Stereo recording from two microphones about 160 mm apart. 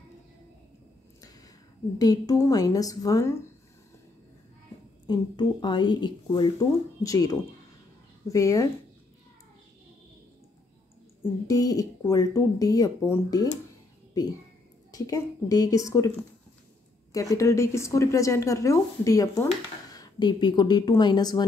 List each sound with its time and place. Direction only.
2.0 s speech: 25° left (ahead or behind)
5.0 s speech: 25° left (ahead or behind)
11.4 s speech: 20° left (ahead or behind)
14.9 s speech: 20° left (ahead or behind)
17.4 s speech: 20° left (ahead or behind)